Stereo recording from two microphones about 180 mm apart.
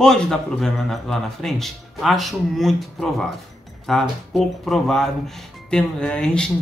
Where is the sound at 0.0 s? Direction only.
5° left (ahead or behind).